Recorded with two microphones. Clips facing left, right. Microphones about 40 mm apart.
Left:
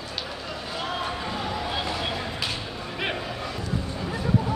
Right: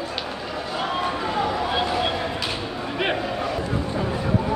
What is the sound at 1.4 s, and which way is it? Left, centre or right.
Vehicle, right.